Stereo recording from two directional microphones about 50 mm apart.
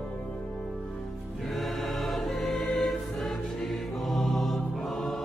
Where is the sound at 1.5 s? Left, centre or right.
Centre.